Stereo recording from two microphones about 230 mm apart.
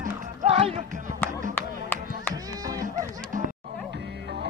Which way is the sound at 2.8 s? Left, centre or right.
Right.